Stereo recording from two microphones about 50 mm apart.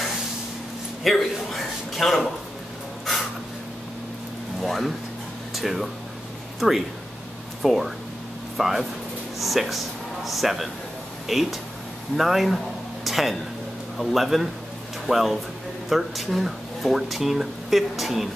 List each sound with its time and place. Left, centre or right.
1.0 s speech: centre
4.6 s speech: centre
5.5 s a sound: centre
6.6 s speech: centre
7.6 s speech: centre